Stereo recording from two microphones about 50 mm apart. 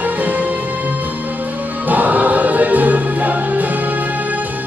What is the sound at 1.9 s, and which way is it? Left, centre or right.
Music, right.